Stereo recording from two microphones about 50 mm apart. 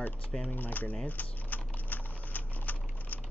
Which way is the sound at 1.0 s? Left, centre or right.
Left.